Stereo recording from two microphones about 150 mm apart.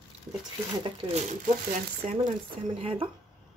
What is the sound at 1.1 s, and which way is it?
A woman's voice, 50° right (ahead or behind).